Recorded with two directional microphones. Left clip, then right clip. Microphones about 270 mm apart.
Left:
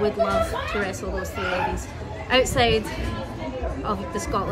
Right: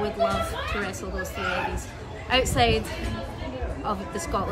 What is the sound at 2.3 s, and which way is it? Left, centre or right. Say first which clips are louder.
Speech: left 2 dB; centre.